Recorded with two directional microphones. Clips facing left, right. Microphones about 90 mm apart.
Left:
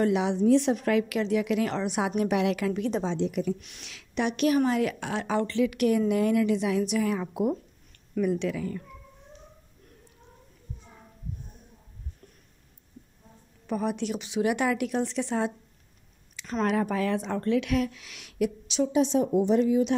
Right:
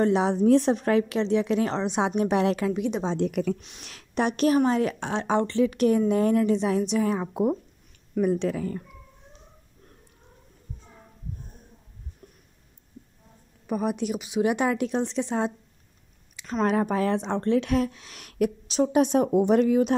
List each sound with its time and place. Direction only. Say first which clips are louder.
0.0 s speech: right 2 dB; 35° right (ahead or behind)
3.2 s a woman's voice: right 2 dB; 55° right (ahead or behind)
3.8 s speech: right 3 dB; 45° right (ahead or behind)
4.6 s speech: right 2 dB; 30° right (ahead or behind)
13.7 s speech: right 2 dB; 15° right (ahead or behind)
14.4 s speech: right 2 dB; 25° right (ahead or behind)
16.6 s speech: right 3 dB; 30° right (ahead or behind); by 19.9 s 60° right (ahead or behind)